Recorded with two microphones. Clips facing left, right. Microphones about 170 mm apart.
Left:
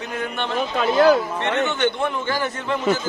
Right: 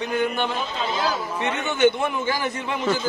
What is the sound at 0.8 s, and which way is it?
Speech, 60° left (ahead or behind).